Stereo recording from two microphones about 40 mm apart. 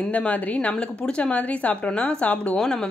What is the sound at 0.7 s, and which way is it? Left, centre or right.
Speech, left.